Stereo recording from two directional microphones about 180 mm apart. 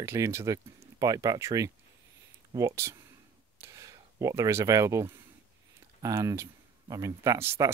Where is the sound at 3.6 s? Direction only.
15° right (ahead or behind).